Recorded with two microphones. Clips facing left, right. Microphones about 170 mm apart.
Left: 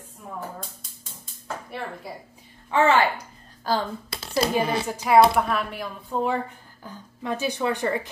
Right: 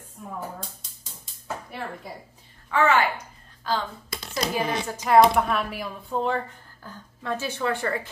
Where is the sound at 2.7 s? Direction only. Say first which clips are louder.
Left 2 dB; 30° left (ahead or behind).